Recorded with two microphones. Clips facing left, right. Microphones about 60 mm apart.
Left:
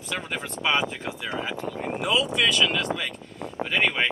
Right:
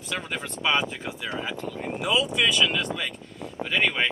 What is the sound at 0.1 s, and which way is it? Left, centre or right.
Speech, centre.